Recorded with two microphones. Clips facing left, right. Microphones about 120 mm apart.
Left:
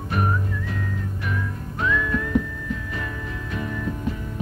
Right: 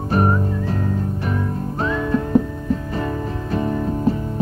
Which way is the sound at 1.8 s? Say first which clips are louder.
Right 3 dB; 35° right (ahead or behind).